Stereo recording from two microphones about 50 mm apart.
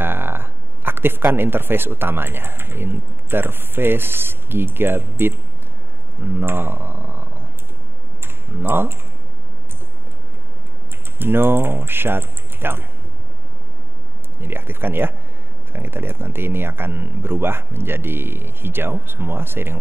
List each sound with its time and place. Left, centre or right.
0.0 s speech: right
8.2 s tick-tock: right
11.1 s speech: right
14.4 s speech: right